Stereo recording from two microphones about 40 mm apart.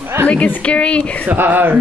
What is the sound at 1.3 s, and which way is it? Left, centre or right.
Speech, right.